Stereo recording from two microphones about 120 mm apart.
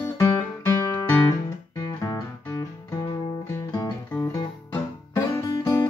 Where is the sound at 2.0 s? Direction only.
25° left (ahead or behind).